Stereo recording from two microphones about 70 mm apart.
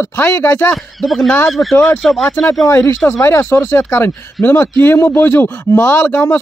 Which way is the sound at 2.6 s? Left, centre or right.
Left.